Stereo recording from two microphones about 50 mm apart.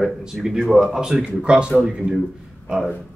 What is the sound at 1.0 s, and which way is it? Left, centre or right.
Speech, centre.